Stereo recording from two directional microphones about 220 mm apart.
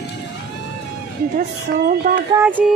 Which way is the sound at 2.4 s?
10° right (ahead or behind).